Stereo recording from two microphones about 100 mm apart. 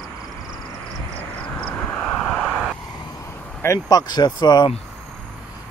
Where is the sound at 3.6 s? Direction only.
35° left (ahead or behind).